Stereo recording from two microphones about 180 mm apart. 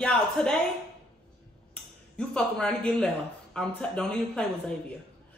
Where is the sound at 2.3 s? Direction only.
5° left (ahead or behind).